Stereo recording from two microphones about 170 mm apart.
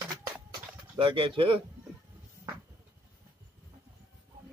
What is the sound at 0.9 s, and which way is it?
Speech, 30° right (ahead or behind).